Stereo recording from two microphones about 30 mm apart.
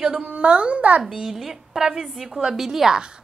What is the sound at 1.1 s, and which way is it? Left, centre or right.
Speech, centre.